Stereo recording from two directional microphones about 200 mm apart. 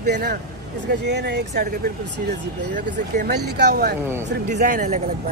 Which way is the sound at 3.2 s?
55° right (ahead or behind).